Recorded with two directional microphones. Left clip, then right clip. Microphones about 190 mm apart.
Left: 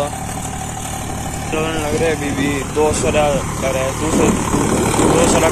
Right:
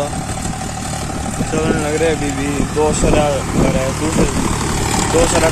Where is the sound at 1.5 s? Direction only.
20° right (ahead or behind).